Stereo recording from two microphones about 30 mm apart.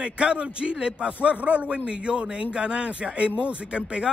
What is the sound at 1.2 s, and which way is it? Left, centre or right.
Speech, right.